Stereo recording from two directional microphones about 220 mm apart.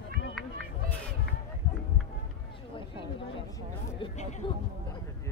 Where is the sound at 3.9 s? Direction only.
25° left (ahead or behind).